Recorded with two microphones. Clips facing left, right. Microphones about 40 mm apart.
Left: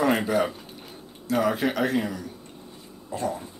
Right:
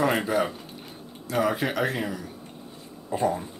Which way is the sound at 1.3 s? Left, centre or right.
Centre.